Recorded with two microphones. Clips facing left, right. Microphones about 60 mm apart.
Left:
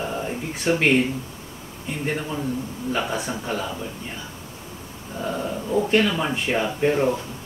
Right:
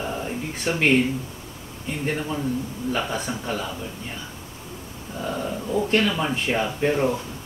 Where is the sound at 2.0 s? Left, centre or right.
Centre.